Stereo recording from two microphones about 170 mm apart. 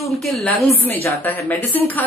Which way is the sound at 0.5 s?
15° left (ahead or behind).